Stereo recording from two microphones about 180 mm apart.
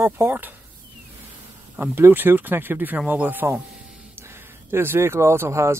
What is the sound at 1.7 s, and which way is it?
Speech, 10° right (ahead or behind).